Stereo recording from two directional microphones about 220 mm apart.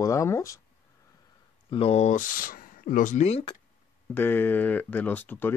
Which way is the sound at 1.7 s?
25° left (ahead or behind).